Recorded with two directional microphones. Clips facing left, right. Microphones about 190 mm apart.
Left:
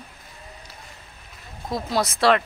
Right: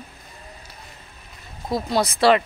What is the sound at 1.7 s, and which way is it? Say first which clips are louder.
Speech: right 2 dB; centre (ahead or behind).